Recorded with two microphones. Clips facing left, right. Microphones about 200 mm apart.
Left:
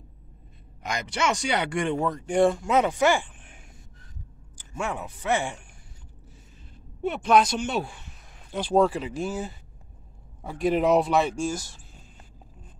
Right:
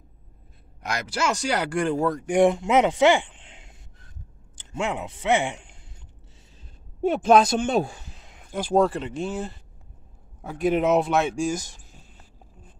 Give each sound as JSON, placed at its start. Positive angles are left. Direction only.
{"t": 0.8, "sound": "speech", "side_deg": -5}
{"t": 7.5, "sound": "speech", "side_deg": -50}
{"t": 8.2, "sound": "a sound", "side_deg": -15}
{"t": 8.8, "sound": "speech", "side_deg": 5}
{"t": 11.5, "sound": "speech", "side_deg": -15}